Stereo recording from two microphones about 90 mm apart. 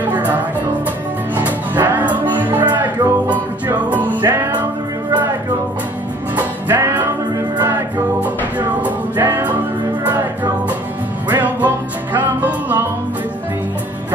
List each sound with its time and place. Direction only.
1.3 s music: 20° right (ahead or behind)
6.3 s music: 20° right (ahead or behind)
9.1 s music: 25° right (ahead or behind)
11.2 s music: 20° right (ahead or behind)